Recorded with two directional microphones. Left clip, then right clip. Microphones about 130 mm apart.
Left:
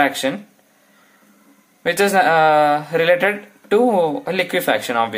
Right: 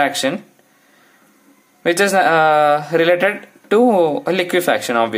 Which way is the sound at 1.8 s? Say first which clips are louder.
Right 1 dB; 30° right (ahead or behind).